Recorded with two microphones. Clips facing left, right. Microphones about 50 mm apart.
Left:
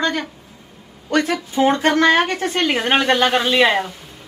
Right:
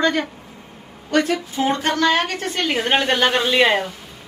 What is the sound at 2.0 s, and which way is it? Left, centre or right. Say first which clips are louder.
Speech: left 3 dB; left.